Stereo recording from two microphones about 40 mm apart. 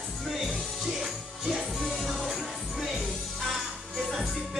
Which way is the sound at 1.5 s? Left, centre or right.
Centre.